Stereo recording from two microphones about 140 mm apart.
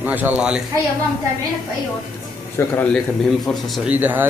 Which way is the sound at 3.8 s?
15° right (ahead or behind).